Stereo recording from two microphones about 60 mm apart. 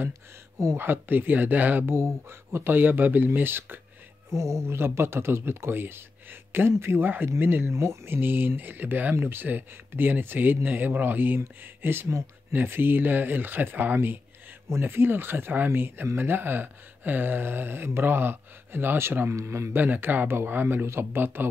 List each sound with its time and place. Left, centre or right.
0.7 s speech: right
4.3 s speech: right
7.7 s speech: right
19.7 s speech: right